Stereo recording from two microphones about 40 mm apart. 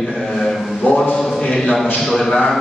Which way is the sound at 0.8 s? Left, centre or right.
Left.